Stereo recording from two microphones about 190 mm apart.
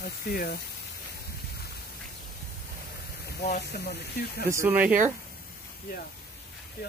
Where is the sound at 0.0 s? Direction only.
50° left (ahead or behind).